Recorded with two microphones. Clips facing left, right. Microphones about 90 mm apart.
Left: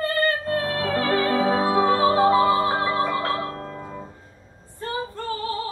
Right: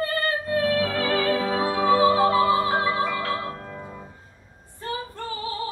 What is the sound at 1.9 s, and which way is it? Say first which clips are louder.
Music: right 3 dB; 40° left (ahead or behind).